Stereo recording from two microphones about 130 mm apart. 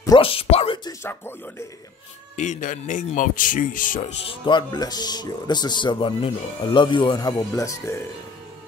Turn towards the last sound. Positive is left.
turn(degrees=25)  # may be behind; listen again after turning